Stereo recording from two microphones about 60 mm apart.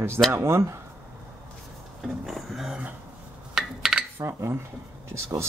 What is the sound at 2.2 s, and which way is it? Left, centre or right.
Speech, centre.